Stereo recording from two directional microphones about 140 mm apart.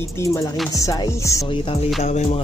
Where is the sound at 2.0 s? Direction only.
50° left (ahead or behind).